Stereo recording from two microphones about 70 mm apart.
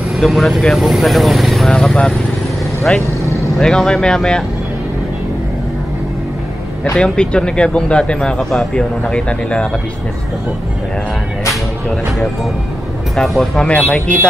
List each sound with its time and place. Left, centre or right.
0.2 s speech: centre
7.0 s speech: centre
13.1 s speech: centre
14.0 s speech: centre